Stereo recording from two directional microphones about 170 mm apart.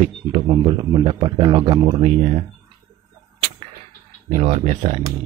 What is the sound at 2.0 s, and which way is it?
Speech, 40° right (ahead or behind).